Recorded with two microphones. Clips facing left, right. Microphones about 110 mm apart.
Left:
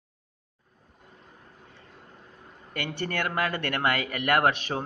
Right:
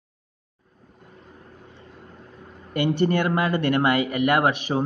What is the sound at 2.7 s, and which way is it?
Speech, 20° right (ahead or behind).